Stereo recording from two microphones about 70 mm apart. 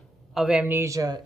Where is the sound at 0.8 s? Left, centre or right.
Right.